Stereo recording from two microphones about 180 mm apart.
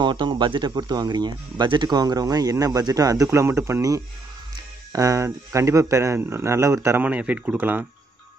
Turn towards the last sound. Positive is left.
turn(degrees=-10)  # may be behind; listen again after turning